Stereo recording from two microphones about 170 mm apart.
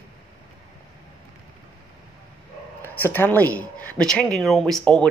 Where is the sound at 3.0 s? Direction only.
10° left (ahead or behind).